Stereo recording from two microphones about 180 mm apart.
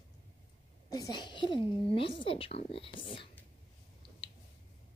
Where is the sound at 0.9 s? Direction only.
20° left (ahead or behind).